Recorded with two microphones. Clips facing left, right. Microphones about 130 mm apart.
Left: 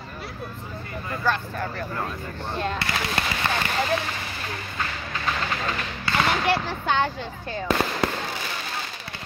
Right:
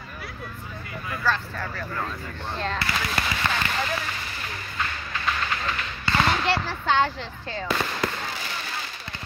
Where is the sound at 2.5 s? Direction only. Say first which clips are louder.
Left 2 dB; 10° left (ahead or behind).